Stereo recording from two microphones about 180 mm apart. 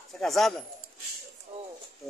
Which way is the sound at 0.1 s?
Centre (ahead or behind).